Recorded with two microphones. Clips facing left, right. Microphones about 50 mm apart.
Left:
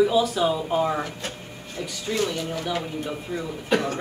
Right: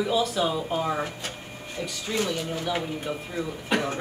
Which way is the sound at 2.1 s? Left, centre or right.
Centre.